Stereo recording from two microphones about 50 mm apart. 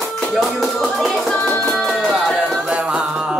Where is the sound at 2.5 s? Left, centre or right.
Centre.